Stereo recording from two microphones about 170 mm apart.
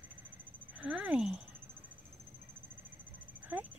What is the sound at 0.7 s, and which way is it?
Speech, 5° right (ahead or behind).